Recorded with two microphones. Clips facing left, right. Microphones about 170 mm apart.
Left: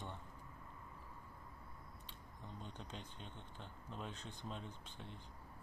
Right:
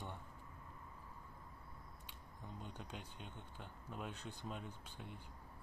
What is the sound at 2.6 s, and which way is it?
Speech, 10° right (ahead or behind).